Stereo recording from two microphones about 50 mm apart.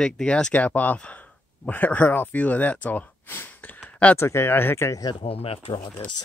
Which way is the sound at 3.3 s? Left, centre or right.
Left.